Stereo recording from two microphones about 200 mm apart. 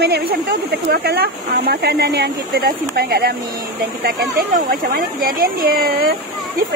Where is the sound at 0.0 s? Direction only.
55° right (ahead or behind).